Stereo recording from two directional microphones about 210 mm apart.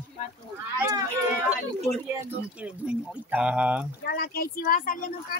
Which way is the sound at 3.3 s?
5° right (ahead or behind).